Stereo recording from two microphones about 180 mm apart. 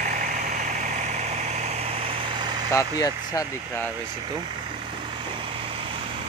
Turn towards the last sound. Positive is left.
turn(degrees=-30)  # may be behind; listen again after turning